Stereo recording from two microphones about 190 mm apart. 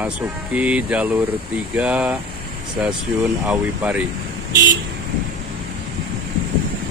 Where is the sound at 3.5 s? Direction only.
5° right (ahead or behind).